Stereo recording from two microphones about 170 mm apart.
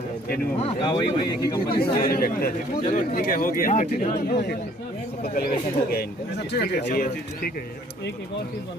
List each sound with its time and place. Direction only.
0.6 s speech: 30° left (ahead or behind)
1.8 s speech: 60° left (ahead or behind)
4.3 s speech: 70° left (ahead or behind)